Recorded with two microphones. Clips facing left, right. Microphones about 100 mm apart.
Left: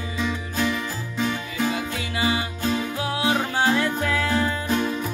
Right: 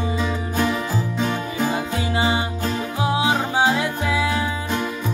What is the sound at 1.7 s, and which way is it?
Music, 30° right (ahead or behind).